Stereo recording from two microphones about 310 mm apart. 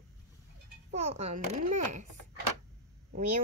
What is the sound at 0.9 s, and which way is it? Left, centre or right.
A woman's voice, right.